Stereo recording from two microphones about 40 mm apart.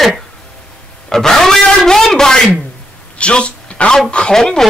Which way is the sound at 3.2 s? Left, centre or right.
Left.